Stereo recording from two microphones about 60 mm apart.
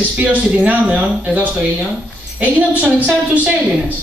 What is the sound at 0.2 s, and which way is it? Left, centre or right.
A man's voice, right.